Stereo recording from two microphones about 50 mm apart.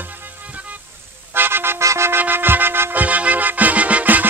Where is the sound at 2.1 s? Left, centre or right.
Right.